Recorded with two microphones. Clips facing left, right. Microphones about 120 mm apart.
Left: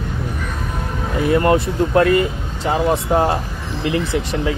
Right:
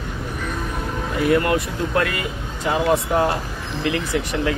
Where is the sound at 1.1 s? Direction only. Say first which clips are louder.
Left 3 dB; 30° left (ahead or behind).